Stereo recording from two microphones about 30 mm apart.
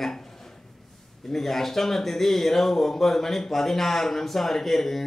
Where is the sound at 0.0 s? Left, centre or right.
Centre.